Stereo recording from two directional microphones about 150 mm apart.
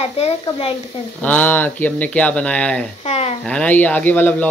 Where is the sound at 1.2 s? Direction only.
10° left (ahead or behind).